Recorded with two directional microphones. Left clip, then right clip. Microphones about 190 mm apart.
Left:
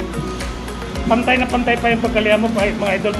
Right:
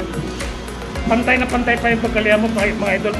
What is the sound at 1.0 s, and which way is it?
Speech, 10° left (ahead or behind).